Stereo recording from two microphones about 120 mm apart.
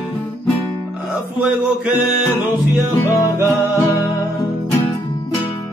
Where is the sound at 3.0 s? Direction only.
25° left (ahead or behind).